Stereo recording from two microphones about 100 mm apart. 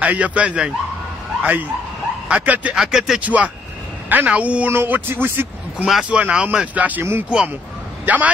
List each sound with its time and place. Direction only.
0.0 s speech: 15° right (ahead or behind)
2.8 s a man's voice: 5° right (ahead or behind); by 5.9 s 20° right (ahead or behind)
6.0 s a man's voice: 10° right (ahead or behind)